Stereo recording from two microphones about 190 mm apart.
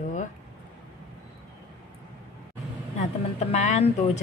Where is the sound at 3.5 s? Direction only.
35° left (ahead or behind).